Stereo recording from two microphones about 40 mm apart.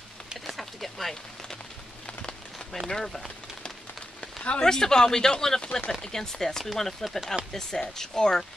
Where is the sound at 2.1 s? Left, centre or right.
Left.